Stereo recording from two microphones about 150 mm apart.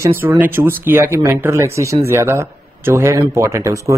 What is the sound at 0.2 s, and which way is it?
A man's voice, 15° right (ahead or behind).